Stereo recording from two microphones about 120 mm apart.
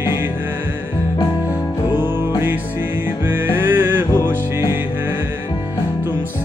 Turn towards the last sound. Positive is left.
turn(degrees=-20)  # may be behind; listen again after turning